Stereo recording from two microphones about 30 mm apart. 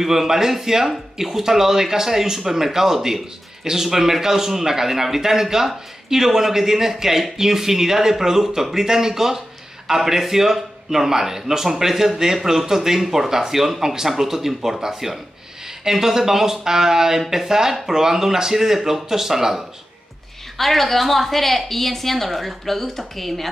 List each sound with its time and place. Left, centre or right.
0.0 s a man's voice: centre
20.5 s a woman's voice: centre